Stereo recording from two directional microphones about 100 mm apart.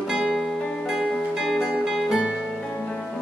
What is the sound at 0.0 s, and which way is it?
Music, 5° right (ahead or behind).